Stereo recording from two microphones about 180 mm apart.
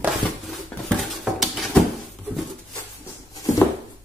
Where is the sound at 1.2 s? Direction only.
Centre (ahead or behind).